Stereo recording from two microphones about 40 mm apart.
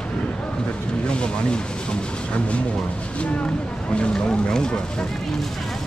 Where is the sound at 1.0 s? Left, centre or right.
Left.